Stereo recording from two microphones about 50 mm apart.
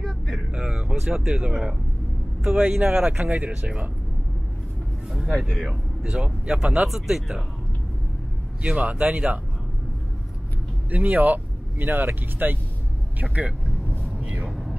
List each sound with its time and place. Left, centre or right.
0.5 s a sound: centre
1.5 s speech: centre
2.4 s speech: right
5.4 s speech: centre
6.0 s speech: right
6.9 s speech: centre
8.6 s speech: right
10.9 s speech: right
13.2 s vehicle: right